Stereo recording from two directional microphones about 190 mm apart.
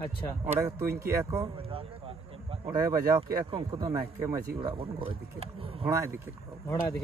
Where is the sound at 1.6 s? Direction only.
30° right (ahead or behind).